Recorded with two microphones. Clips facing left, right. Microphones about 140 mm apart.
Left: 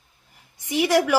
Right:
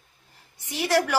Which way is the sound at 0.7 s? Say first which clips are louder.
Left 4 dB; 15° left (ahead or behind).